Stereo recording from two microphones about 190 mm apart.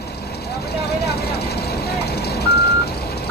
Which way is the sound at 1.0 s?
55° left (ahead or behind).